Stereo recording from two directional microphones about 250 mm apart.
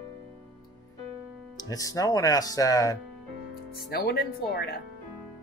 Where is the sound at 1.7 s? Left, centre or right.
Centre.